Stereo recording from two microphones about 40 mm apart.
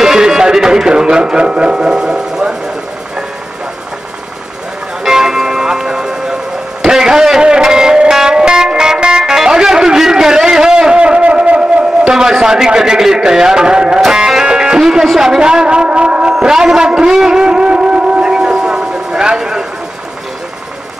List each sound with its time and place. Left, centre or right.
0.0 s speech: centre
5.0 s music: centre
6.8 s guitar: centre
12.0 s a sound: centre
14.1 s music: centre
15.1 s a sound: centre